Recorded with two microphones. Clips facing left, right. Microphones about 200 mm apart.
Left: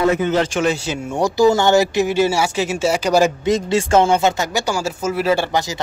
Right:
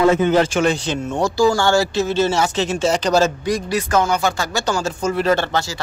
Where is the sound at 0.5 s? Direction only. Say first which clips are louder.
Right 1 dB; 5° left (ahead or behind).